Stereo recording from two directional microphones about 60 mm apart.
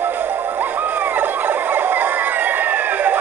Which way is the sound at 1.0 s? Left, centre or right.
Right.